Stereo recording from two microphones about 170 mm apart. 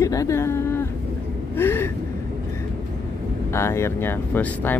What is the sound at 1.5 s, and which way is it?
Gasp, 10° left (ahead or behind).